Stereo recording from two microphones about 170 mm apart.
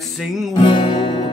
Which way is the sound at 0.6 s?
25° left (ahead or behind).